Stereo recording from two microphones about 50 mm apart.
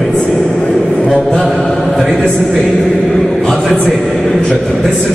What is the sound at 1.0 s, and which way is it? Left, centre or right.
Chant, centre.